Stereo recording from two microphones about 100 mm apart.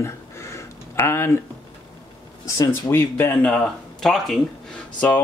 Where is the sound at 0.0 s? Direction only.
30° left (ahead or behind).